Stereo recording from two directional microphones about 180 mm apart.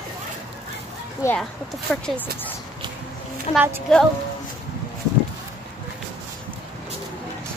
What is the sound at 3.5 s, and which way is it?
Speech, 35° left (ahead or behind).